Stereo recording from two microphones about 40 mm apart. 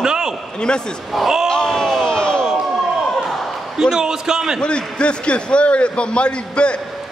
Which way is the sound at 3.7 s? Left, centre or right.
Centre.